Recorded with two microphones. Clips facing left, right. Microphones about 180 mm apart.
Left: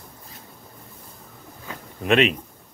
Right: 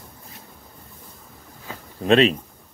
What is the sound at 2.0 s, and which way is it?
Speech, 35° right (ahead or behind).